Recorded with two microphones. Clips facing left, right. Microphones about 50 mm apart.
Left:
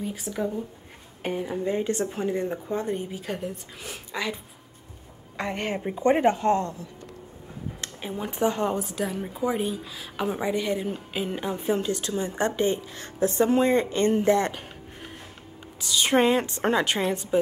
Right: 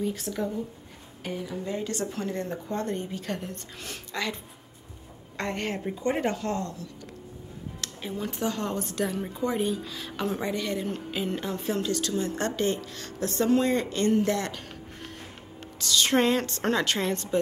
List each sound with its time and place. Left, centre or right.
0.0 s a woman's voice: centre
1.2 s a woman's voice: left; by 4.4 s centre
5.4 s a woman's voice: centre
5.9 s a woman's voice: left
8.8 s a woman's voice: centre